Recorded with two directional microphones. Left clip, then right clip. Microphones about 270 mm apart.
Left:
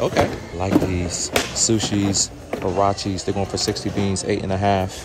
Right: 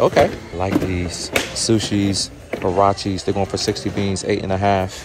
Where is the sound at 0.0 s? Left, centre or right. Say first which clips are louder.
Right 5 dB; centre.